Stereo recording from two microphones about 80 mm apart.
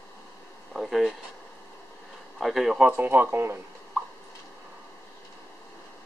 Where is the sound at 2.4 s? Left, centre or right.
Centre.